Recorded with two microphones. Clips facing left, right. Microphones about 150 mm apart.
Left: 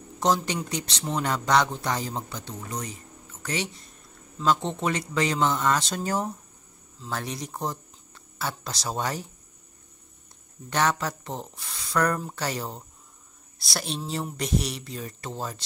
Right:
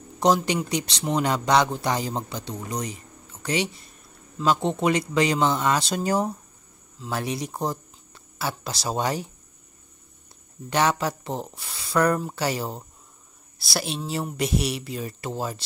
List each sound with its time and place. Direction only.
0.2 s speech: 10° right (ahead or behind)
10.7 s speech: 10° right (ahead or behind)